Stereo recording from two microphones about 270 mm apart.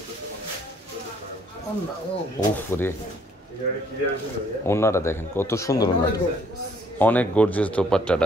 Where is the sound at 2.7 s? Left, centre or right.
Centre.